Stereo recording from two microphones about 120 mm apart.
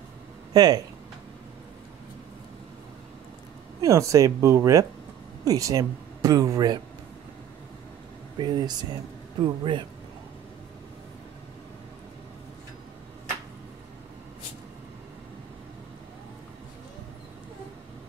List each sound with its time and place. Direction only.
0.5 s speech: 35° right (ahead or behind)
3.8 s speech: 25° right (ahead or behind)
8.4 s speech: 35° right (ahead or behind)